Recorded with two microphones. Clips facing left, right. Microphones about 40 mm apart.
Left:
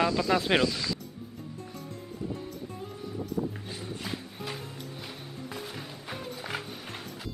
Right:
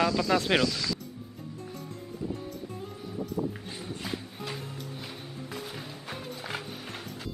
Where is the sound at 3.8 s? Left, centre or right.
Centre.